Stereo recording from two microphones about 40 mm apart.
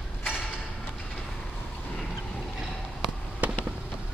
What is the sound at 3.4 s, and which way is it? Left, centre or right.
Fireworks, right.